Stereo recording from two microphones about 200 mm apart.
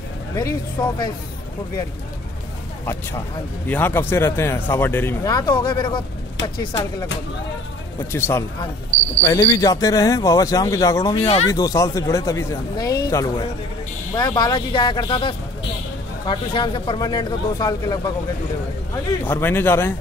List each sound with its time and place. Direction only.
0.4 s speech: 20° left (ahead or behind)
2.8 s speech: 10° left (ahead or behind)
8.1 s speech: 15° left (ahead or behind)
11.1 s speech: 30° left (ahead or behind)
11.5 s speech: 15° left (ahead or behind)
19.2 s speech: 10° left (ahead or behind)